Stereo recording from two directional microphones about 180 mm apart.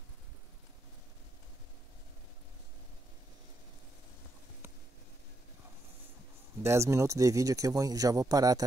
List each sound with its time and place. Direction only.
6.6 s speech: 15° right (ahead or behind)